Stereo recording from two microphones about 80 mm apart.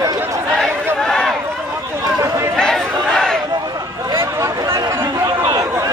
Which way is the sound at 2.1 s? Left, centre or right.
Right.